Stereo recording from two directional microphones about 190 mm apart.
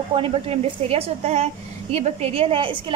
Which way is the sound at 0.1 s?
30° right (ahead or behind).